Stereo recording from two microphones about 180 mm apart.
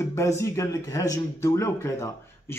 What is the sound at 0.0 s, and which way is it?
Speech, 15° left (ahead or behind).